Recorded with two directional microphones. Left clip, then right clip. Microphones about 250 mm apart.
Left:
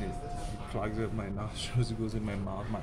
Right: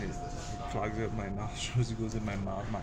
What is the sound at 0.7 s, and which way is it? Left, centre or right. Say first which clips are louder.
Speech: even; centre.